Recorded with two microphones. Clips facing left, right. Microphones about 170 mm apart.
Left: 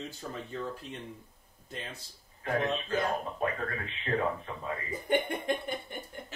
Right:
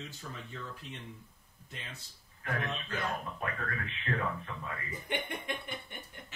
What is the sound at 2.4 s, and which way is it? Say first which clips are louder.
Speech: left 7 dB; 35° left (ahead or behind).